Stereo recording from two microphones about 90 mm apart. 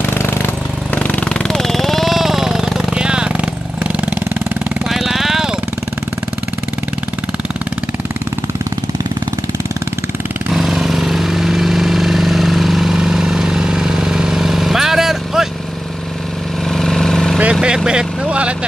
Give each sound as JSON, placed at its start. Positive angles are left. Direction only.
{"t": 0.0, "sound": "vehicle", "side_deg": 25}
{"t": 1.5, "sound": "a sound", "side_deg": 5}
{"t": 4.8, "sound": "vehicle", "side_deg": -5}
{"t": 10.5, "sound": "vehicle", "side_deg": -5}
{"t": 16.6, "sound": "vehicle", "side_deg": 5}
{"t": 17.4, "sound": "vehicle", "side_deg": -10}